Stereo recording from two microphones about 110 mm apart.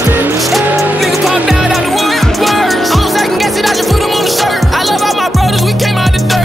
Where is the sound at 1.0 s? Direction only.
Centre (ahead or behind).